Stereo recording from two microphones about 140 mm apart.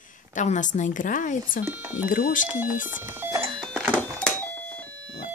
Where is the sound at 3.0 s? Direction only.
15° right (ahead or behind).